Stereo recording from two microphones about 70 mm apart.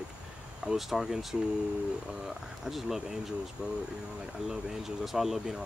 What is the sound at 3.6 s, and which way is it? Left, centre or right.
Speech, centre.